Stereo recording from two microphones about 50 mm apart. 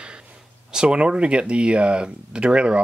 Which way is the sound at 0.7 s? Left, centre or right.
Centre.